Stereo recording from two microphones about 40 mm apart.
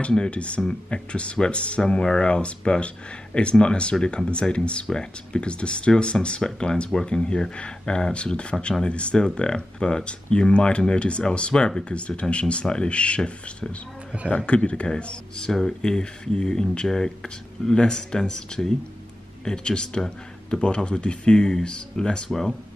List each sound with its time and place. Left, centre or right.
0.1 s speech: left
22.3 s speech: centre